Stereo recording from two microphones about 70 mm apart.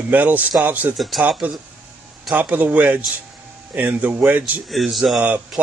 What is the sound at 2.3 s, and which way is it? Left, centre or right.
Speech, right.